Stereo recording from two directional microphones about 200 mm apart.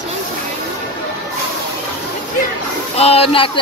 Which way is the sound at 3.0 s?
30° left (ahead or behind).